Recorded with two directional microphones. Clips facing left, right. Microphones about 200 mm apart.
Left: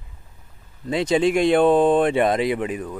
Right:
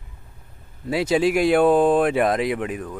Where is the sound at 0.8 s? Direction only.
5° right (ahead or behind).